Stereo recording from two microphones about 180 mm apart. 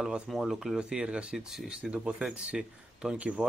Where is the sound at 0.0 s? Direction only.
Centre (ahead or behind).